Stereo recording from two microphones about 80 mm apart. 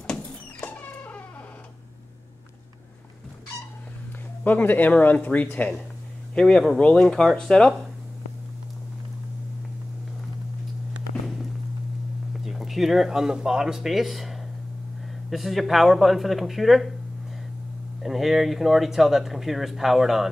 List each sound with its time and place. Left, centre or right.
0.0 s cat: centre
0.7 s a sound: centre
4.5 s speech: left
6.3 s speech: centre
12.4 s speech: centre
18.0 s speech: centre